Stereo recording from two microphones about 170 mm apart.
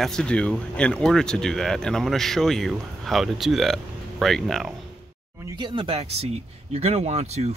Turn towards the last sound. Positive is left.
turn(degrees=-40)  # may be behind; listen again after turning